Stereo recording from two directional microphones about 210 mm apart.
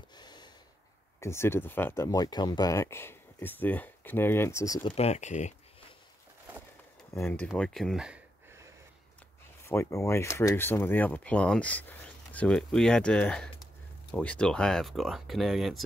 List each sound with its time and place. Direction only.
0.1 s snort: 20° left (ahead or behind)
1.2 s speech: 10° left (ahead or behind)
4.9 s speech: 30° left (ahead or behind)
7.2 s speech: 10° left (ahead or behind)
9.7 s speech: 15° left (ahead or behind)